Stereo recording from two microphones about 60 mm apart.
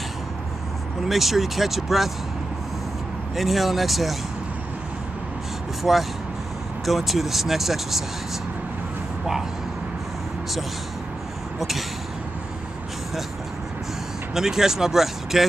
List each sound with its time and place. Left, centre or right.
1.0 s speech: centre
3.3 s speech: centre
5.9 s speech: centre
14.3 s speech: centre